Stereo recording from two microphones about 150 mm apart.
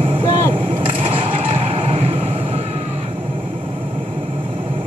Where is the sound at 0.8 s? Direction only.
35° right (ahead or behind).